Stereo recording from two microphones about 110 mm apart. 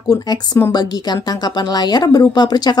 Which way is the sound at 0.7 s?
40° left (ahead or behind).